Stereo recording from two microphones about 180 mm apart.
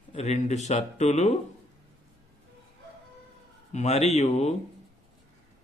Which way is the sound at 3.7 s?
40° left (ahead or behind).